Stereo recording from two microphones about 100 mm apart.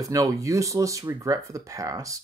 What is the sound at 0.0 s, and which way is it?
Speech, 35° right (ahead or behind).